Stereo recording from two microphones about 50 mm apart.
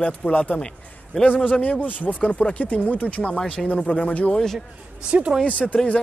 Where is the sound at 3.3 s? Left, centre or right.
Centre.